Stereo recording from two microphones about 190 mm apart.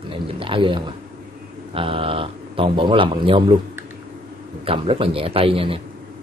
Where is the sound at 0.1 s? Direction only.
25° right (ahead or behind).